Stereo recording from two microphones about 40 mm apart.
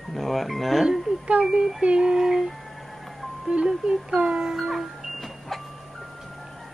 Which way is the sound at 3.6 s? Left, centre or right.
Centre.